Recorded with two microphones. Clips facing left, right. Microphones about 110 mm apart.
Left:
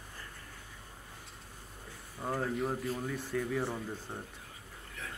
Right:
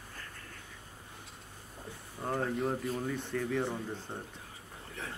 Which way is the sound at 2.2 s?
Centre (ahead or behind).